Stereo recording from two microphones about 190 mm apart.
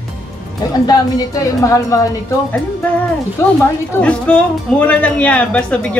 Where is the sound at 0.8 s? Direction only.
20° left (ahead or behind).